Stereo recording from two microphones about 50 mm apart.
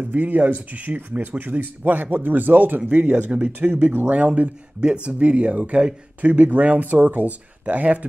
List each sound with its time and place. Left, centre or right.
0.0 s speech: right
3.1 s speech: right
4.4 s speech: right